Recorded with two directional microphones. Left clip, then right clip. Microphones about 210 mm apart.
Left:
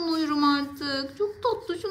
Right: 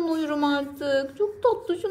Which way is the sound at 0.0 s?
5° left (ahead or behind).